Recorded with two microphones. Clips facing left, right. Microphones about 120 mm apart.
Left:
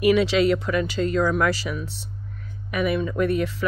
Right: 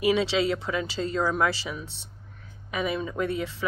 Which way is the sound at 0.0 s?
25° right (ahead or behind).